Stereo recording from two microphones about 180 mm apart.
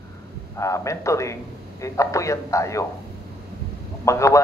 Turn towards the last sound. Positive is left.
turn(degrees=15)  # may be behind; listen again after turning